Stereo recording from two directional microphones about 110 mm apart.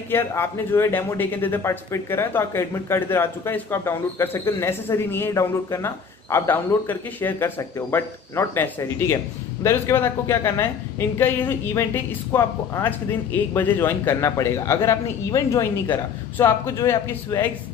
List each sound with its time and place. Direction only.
0.1 s speech: 20° left (ahead or behind)